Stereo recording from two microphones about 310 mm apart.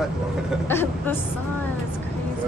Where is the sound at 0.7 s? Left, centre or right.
Centre.